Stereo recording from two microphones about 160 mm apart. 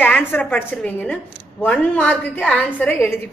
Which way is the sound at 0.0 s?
10° left (ahead or behind).